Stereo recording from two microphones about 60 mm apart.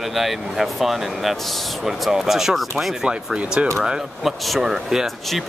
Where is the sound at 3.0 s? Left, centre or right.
Centre.